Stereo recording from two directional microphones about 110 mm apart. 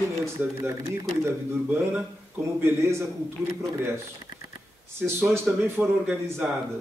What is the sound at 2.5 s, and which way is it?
Speech, 25° right (ahead or behind).